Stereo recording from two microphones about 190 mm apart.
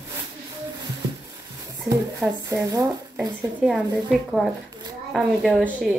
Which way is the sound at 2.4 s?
15° right (ahead or behind).